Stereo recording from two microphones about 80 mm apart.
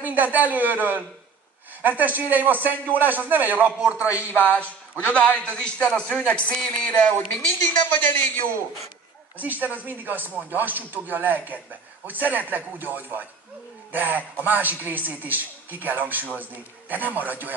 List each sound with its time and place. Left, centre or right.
0.0 s a man's voice: right
4.4 s speech: centre
9.4 s a man's voice: right